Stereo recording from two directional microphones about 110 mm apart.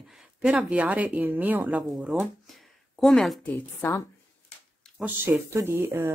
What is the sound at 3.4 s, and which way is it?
Speech, 10° left (ahead or behind).